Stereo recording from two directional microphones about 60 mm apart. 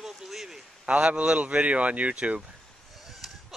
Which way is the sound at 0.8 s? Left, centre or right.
Centre.